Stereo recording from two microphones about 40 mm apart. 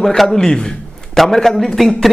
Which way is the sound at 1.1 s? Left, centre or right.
Centre.